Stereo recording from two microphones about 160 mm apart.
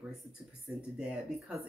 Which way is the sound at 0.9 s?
5° right (ahead or behind).